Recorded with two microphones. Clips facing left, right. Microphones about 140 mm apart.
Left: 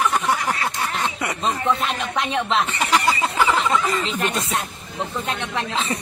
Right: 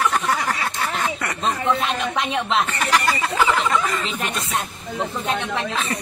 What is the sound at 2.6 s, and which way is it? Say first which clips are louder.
Speech: left 1 dB; 15° left (ahead or behind).